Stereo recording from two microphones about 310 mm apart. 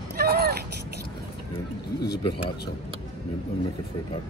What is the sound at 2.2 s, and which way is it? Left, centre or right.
Speech, centre.